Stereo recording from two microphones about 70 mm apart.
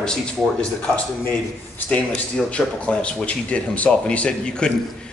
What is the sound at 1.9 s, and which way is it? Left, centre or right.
Speech, centre.